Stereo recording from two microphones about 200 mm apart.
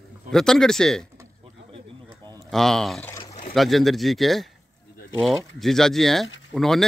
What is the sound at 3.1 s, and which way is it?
Pour, 20° left (ahead or behind).